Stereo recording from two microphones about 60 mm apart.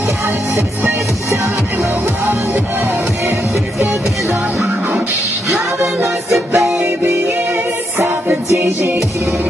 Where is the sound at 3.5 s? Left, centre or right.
Right.